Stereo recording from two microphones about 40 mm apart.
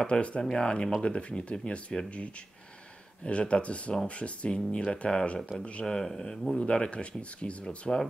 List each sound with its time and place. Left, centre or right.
0.0 s speech: left
3.3 s speech: left; by 6.6 s centre
6.7 s speech: left
7.8 s speech: centre